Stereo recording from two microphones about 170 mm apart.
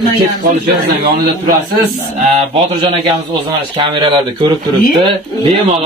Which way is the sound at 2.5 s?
35° right (ahead or behind).